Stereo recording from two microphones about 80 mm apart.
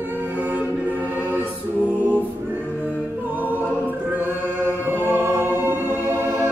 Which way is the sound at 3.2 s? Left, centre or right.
Right.